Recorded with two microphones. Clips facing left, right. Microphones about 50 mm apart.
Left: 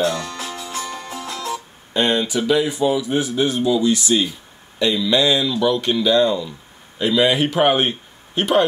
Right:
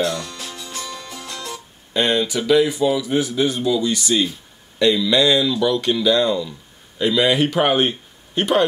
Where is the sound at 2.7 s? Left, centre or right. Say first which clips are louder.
Even; centre.